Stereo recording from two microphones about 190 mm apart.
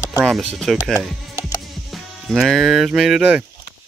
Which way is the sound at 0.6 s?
Centre (ahead or behind).